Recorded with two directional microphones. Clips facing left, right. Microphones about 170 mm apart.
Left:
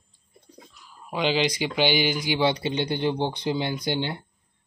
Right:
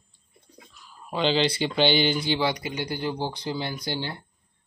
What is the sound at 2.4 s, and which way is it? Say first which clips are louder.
Speech: left 4 dB; 25° left (ahead or behind).